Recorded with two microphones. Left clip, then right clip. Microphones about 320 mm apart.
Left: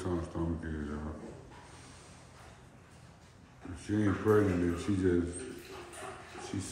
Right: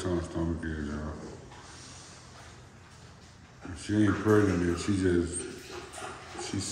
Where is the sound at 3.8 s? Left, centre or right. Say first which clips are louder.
Right 5 dB; centre.